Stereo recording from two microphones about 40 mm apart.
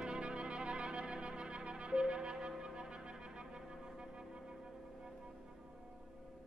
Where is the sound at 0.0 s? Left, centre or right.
Right.